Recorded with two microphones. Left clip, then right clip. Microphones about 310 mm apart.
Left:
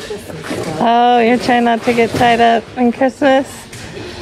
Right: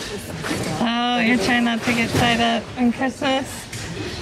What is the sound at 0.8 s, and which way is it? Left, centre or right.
A woman's voice, centre.